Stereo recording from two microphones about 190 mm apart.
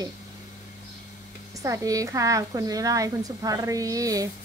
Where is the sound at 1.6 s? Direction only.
15° right (ahead or behind).